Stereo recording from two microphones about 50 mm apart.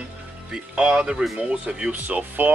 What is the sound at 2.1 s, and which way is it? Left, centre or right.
Speech, right.